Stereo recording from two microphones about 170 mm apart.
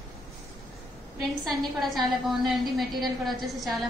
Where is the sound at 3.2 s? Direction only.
Centre (ahead or behind).